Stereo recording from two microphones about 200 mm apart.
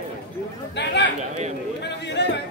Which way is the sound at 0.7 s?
60° left (ahead or behind).